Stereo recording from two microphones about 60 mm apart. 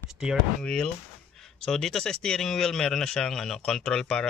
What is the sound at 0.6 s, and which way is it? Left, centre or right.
Speech, centre.